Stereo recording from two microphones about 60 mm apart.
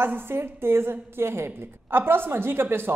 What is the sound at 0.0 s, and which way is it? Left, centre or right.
A woman's voice, right.